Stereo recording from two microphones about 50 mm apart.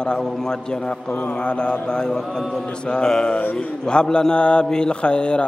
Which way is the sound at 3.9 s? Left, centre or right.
Centre.